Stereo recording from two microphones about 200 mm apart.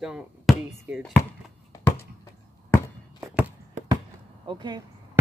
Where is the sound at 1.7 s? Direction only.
10° left (ahead or behind).